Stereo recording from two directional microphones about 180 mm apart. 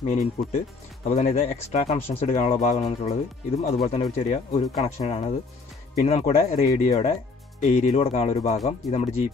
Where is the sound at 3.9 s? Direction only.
35° left (ahead or behind).